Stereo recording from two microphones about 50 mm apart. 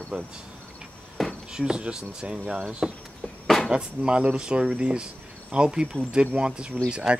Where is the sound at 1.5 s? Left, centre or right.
Centre.